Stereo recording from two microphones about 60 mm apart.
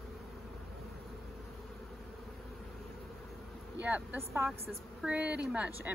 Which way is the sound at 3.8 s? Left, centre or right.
Right.